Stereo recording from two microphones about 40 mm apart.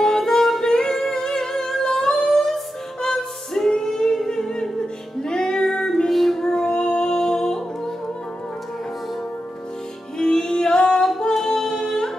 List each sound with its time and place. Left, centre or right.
0.2 s music: centre
6.0 s music: centre
6.4 s music: left
10.1 s music: centre